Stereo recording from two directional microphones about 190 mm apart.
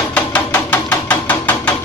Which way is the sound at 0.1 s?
10° left (ahead or behind).